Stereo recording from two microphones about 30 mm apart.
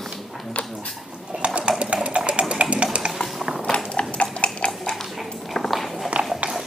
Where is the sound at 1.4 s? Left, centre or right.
Right.